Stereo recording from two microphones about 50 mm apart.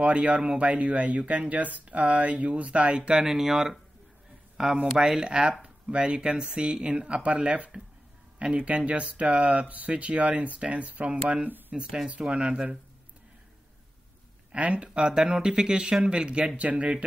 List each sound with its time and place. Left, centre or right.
0.0 s speech: right
3.1 s speech: centre; by 11.1 s right
11.1 s speech: centre
12.4 s speech: right
14.5 s speech: right